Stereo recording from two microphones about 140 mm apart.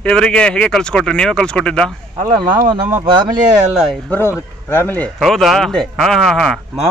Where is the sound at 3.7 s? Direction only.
Centre (ahead or behind).